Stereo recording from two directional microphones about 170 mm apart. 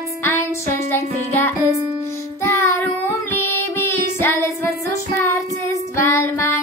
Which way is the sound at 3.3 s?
15° left (ahead or behind).